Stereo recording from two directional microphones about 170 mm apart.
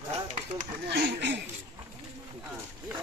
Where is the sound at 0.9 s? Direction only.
85° right.